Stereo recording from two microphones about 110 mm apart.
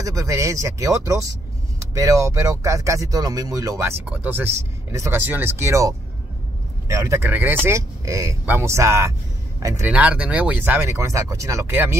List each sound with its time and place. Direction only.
0.0 s speech: 30° right (ahead or behind)
4.0 s a man's voice: 15° right (ahead or behind)
9.8 s speech: 15° right (ahead or behind); by 11.7 s 30° right (ahead or behind)
11.7 s speech: 15° right (ahead or behind)